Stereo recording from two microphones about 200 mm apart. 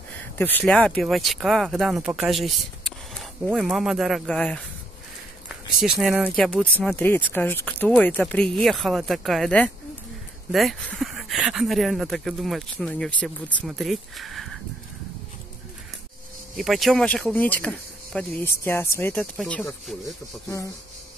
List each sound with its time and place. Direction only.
0.4 s speech: 10° left (ahead or behind)
5.8 s speech: centre (ahead or behind)
16.5 s speech: centre (ahead or behind)
20.4 s speech: 15° left (ahead or behind)